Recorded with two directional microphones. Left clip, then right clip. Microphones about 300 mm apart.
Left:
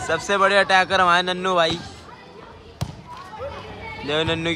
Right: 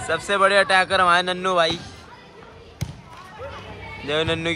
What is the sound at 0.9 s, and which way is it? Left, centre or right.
Speech, centre.